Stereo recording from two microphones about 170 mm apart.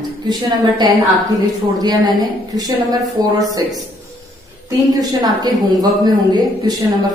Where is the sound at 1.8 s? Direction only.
25° right (ahead or behind).